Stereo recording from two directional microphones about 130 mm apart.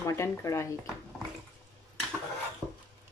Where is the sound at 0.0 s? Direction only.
20° left (ahead or behind).